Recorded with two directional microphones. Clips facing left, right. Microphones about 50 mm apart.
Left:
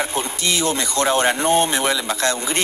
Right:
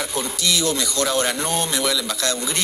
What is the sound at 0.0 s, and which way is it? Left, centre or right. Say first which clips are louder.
Speech: left 2 dB; left.